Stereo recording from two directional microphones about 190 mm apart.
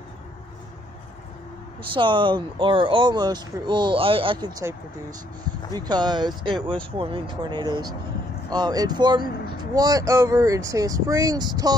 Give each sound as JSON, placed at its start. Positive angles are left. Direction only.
{"t": 2.0, "sound": "speech", "side_deg": -25}